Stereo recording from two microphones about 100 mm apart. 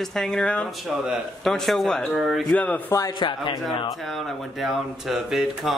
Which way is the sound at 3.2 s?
50° left (ahead or behind).